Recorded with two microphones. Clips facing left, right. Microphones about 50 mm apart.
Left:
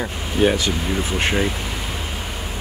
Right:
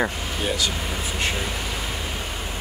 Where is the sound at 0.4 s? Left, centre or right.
Left.